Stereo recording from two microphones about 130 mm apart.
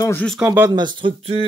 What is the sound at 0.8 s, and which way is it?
Speech, 40° right (ahead or behind).